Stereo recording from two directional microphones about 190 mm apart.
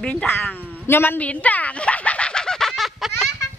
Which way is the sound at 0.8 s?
10° left (ahead or behind).